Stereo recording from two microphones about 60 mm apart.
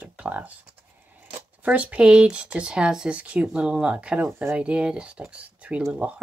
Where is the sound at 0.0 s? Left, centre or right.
Right.